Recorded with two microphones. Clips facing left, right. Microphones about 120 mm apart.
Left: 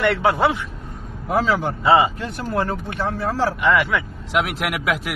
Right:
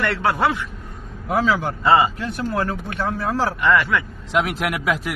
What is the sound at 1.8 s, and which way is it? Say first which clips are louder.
Speech: left 1 dB; 20° left (ahead or behind).